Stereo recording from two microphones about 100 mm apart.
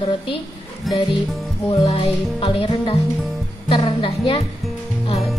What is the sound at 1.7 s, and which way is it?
Music, 60° left (ahead or behind).